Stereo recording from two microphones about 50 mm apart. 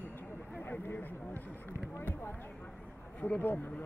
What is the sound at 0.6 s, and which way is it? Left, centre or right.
Speech, left.